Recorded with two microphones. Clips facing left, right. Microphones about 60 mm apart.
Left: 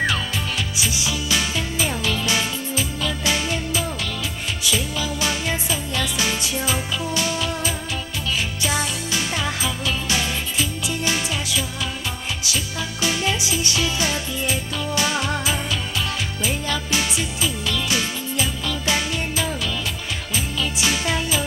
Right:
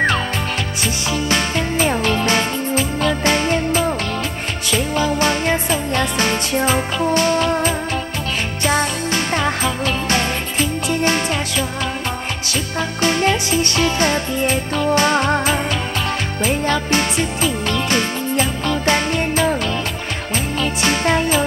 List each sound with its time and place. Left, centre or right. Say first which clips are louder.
0.7 s music: right 4 dB; right
13.0 s music: right 6 dB; right
20.8 s music: right 7 dB; right